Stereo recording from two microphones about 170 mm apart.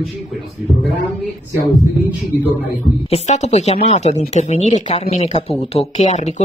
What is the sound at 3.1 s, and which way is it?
Speech, 40° left (ahead or behind).